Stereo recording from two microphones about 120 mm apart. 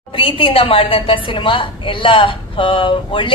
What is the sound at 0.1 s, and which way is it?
A woman's voice, 50° left (ahead or behind).